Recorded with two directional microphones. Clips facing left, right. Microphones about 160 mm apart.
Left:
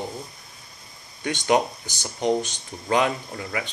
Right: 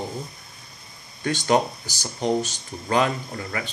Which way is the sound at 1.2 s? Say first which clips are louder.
Even; 20° left (ahead or behind).